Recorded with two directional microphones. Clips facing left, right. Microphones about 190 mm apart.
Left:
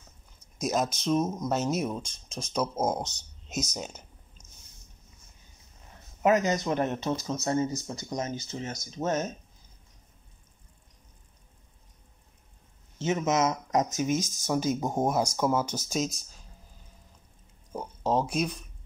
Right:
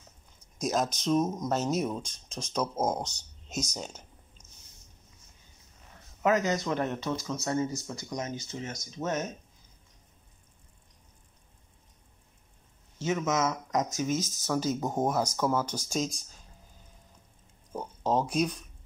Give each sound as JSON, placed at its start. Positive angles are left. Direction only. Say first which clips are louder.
{"t": 0.6, "sound": "speech", "louder": "left 1 dB", "side_deg": 5}
{"t": 3.0, "sound": "speech", "louder": "left 1 dB", "side_deg": -10}
{"t": 3.7, "sound": "speech", "louder": "left 2 dB", "side_deg": 5}
{"t": 6.2, "sound": "speech", "louder": "left 2 dB", "side_deg": 20}
{"t": 13.0, "sound": "speech", "louder": "left 2 dB", "side_deg": 25}
{"t": 17.7, "sound": "speech", "louder": "left 1 dB", "side_deg": 5}